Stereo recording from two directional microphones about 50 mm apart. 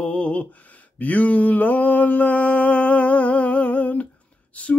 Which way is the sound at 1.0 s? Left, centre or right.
Left.